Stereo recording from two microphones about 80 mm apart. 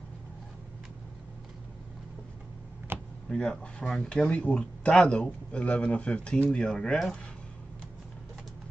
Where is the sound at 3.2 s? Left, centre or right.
Centre.